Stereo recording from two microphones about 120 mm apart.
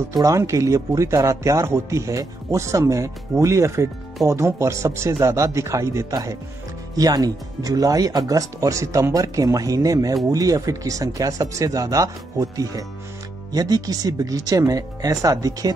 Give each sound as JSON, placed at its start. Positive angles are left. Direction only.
{"t": 0.1, "sound": "speech", "side_deg": -25}